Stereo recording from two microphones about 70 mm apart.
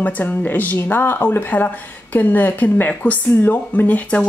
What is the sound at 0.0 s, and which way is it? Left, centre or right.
Speech, left.